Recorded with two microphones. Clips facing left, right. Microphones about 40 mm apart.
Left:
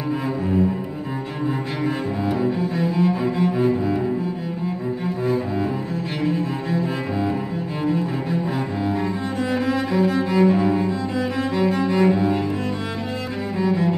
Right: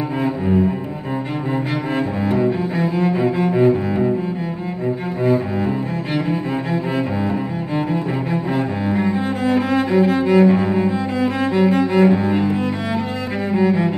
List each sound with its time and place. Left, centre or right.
2.3 s cello: centre
5.2 s cello: centre
13.5 s cello: centre